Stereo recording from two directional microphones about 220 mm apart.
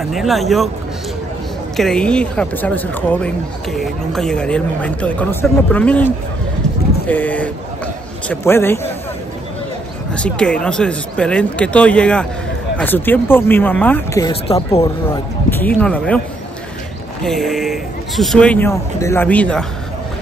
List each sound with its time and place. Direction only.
0.0 s a man's voice: centre (ahead or behind)
1.8 s a man's voice: 5° left (ahead or behind)
7.1 s a man's voice: 5° left (ahead or behind)
10.1 s a man's voice: 5° left (ahead or behind)
14.3 s speech: 25° left (ahead or behind)
15.6 s a man's voice: 5° left (ahead or behind)
17.2 s a man's voice: centre (ahead or behind)